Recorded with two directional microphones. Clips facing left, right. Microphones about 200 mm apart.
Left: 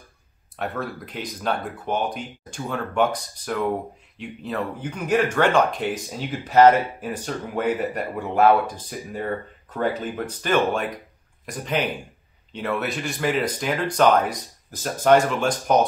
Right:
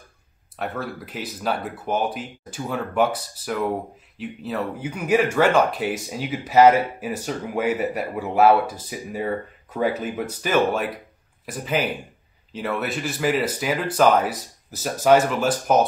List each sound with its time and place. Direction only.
0.6 s speech: centre (ahead or behind)